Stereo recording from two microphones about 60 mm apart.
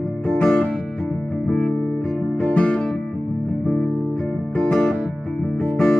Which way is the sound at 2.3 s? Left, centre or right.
Left.